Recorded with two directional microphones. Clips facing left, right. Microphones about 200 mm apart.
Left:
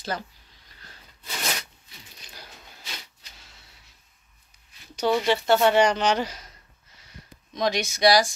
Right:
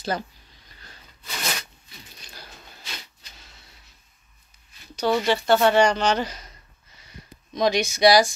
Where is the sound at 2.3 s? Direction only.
15° left (ahead or behind).